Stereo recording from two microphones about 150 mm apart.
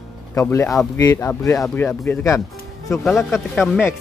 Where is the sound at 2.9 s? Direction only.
Centre (ahead or behind).